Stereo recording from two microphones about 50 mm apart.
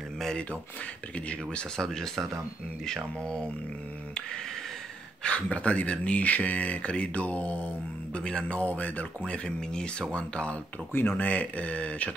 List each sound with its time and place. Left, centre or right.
1.1 s speech: left
1.8 s speech: centre
3.2 s speech: centre
5.2 s speech: left
8.2 s speech: centre
8.5 s speech: left
9.2 s speech: centre
10.9 s speech: left
11.2 s speech: left